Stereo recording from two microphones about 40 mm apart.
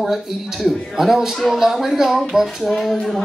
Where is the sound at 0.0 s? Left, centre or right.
Centre.